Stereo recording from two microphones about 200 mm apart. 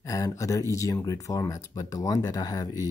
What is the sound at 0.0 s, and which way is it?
Speech, 15° left (ahead or behind).